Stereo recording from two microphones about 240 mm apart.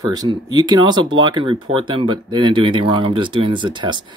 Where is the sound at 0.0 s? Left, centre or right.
Centre.